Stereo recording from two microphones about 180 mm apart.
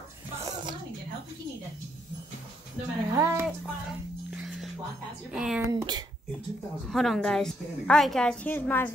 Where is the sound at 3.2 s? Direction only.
15° right (ahead or behind).